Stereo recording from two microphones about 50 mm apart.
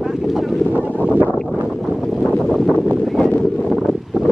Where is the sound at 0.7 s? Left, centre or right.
Right.